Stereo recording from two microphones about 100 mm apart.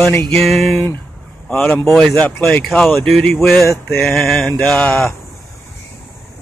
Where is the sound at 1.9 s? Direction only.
5° left (ahead or behind).